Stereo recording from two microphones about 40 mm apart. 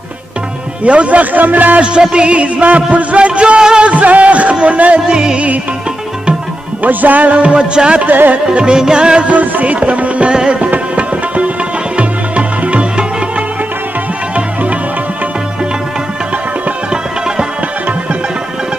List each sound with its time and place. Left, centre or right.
0.8 s a man's voice: right
1.8 s a man's voice: right
3.9 s music: right
5.1 s a man's voice: right
6.8 s a man's voice: right
7.5 s a man's voice: right
9.3 s music: right
10.3 s a man's voice: right
10.7 s music: right
14.3 s music: right